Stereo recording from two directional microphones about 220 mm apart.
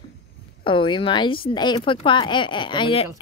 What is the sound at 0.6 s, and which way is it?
Speech, 20° left (ahead or behind).